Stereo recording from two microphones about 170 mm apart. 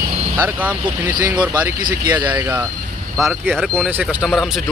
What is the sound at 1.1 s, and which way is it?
Speech, 25° right (ahead or behind).